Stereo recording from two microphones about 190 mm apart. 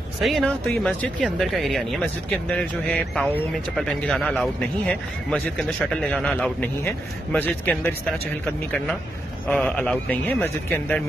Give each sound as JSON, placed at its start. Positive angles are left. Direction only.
{"t": 0.2, "sound": "a man's voice", "side_deg": 0}
{"t": 9.5, "sound": "a man's voice", "side_deg": 5}